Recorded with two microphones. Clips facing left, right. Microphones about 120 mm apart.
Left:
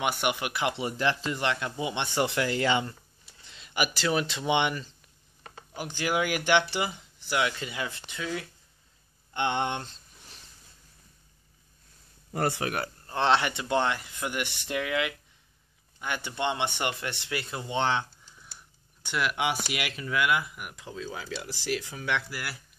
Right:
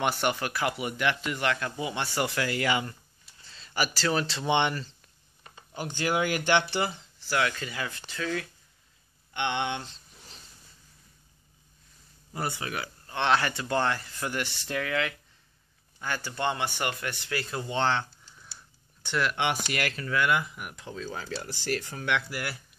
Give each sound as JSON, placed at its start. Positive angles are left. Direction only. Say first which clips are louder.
{"t": 0.0, "sound": "speech", "louder": "right 1 dB", "side_deg": 10}
{"t": 5.4, "sound": "a sound", "louder": "left 4 dB", "side_deg": 65}
{"t": 5.8, "sound": "speech", "louder": "right 1 dB", "side_deg": 5}
{"t": 9.3, "sound": "speech", "louder": "left 2 dB", "side_deg": 35}
{"t": 12.6, "sound": "speech", "louder": "left 4 dB", "side_deg": 60}
{"t": 13.0, "sound": "a sound", "louder": "left 1 dB", "side_deg": 30}
{"t": 13.4, "sound": "speech", "louder": "left 1 dB", "side_deg": 20}
{"t": 19.0, "sound": "speech", "louder": "right 1 dB", "side_deg": 10}